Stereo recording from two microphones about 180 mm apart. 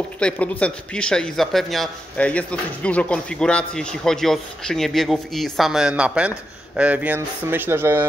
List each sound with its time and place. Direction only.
0.2 s speech: 5° left (ahead or behind); by 8.0 s 15° right (ahead or behind)